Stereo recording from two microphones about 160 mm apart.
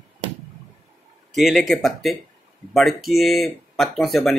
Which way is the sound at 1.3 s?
Centre (ahead or behind).